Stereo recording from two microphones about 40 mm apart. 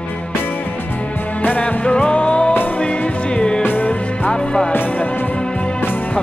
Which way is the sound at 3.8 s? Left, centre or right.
Left.